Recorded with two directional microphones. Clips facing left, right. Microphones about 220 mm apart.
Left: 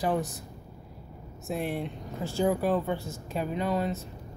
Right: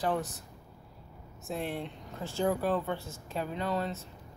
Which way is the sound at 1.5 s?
10° left (ahead or behind).